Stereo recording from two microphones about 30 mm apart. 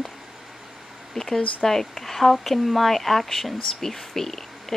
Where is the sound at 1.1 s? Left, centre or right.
Centre.